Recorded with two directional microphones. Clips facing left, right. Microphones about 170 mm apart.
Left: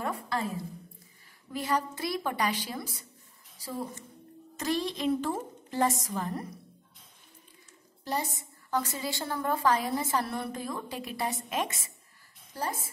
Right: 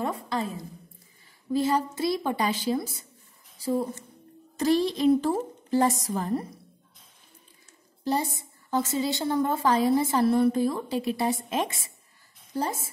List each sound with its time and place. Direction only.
0.0 s a woman's voice: 20° right (ahead or behind)
1.5 s a woman's voice: 25° right (ahead or behind)
4.6 s a woman's voice: 35° right (ahead or behind)
8.0 s a woman's voice: 30° right (ahead or behind)